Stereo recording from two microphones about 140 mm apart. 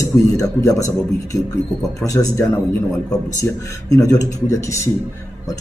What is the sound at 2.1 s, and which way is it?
Speech, 25° left (ahead or behind).